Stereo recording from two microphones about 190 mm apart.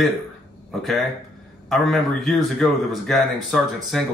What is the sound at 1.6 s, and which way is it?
A man's voice, centre (ahead or behind).